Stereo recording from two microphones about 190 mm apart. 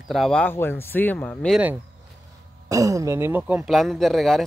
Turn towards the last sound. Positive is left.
turn(degrees=0)  # may be behind; listen again after turning